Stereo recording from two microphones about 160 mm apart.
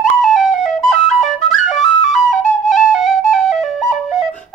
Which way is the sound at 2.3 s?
50° left (ahead or behind).